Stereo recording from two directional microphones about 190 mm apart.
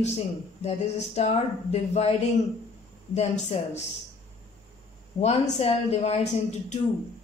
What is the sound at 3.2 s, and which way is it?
Speech, 35° left (ahead or behind).